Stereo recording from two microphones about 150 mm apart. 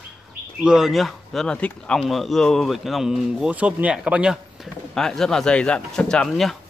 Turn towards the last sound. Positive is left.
turn(degrees=5)  # may be behind; listen again after turning